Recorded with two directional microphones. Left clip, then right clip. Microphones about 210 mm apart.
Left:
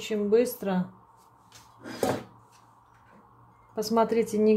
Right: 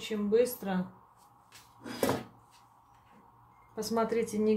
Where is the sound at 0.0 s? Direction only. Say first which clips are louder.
Left 4 dB; 40° left (ahead or behind).